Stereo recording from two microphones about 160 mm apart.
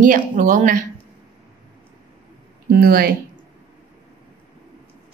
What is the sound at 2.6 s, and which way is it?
Speech, 65° right (ahead or behind).